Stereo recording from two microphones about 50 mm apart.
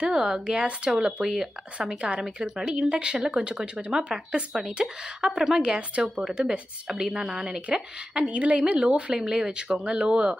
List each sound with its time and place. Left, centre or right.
0.0 s a woman's voice: centre
2.0 s a woman's voice: centre
5.8 s speech: right
6.2 s a woman's voice: centre